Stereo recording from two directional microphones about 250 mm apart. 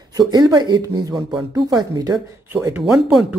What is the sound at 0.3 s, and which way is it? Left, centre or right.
Speech, centre.